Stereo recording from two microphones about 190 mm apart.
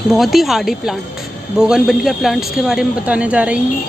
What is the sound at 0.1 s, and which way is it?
Speech, centre (ahead or behind).